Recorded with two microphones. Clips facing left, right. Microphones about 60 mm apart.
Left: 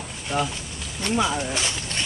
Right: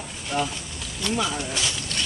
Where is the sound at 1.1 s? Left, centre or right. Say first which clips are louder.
Left 4 dB; centre.